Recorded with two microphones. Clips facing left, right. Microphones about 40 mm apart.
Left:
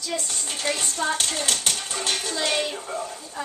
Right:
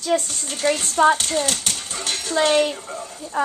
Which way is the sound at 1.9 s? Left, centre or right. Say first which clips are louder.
Left 1 dB; left.